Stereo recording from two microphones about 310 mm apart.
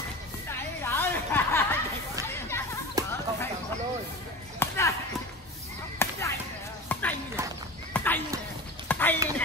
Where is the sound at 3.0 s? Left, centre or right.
Centre.